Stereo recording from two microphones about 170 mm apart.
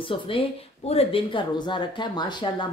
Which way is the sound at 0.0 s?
30° left (ahead or behind).